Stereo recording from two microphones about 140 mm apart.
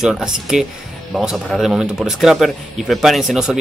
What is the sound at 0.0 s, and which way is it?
Speech, 5° right (ahead or behind).